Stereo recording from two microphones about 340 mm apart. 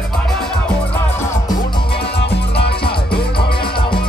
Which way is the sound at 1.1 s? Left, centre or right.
Centre.